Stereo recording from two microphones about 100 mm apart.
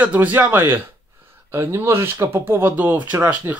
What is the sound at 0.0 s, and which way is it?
Speech, 15° right (ahead or behind).